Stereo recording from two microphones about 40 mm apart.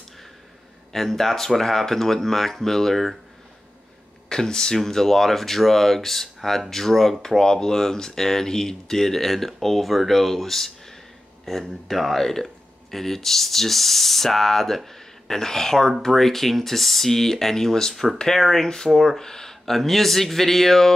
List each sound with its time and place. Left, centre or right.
0.9 s speech: centre
4.3 s speech: centre